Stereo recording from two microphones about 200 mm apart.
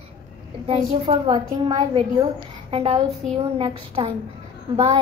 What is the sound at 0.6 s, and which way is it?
A woman's voice, 25° right (ahead or behind).